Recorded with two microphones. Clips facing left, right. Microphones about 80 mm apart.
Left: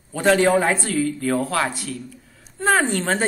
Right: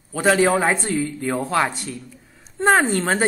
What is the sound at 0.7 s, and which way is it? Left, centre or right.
A woman's voice, right.